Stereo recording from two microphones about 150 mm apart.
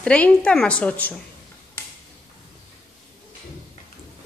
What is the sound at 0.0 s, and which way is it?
A woman's voice, 5° left (ahead or behind).